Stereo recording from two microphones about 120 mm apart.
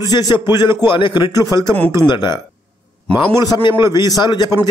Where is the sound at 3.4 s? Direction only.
30° left (ahead or behind).